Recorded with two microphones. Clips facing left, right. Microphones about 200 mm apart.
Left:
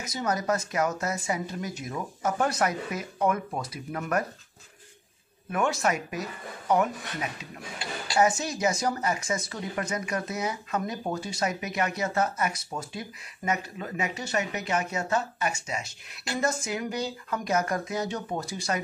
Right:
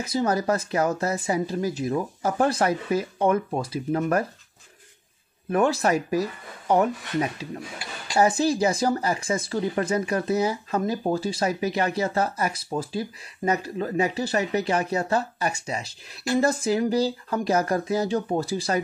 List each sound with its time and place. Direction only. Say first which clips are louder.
0.0 s speech: right 6 dB; 30° right (ahead or behind)
5.5 s speech: right 5 dB; 35° right (ahead or behind)